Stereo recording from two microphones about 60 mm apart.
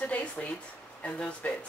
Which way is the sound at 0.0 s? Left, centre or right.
Left.